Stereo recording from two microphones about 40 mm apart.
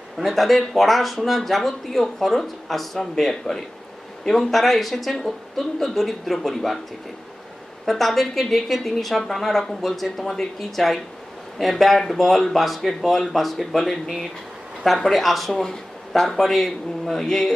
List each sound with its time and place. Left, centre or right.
0.2 s speech: centre
7.8 s speech: centre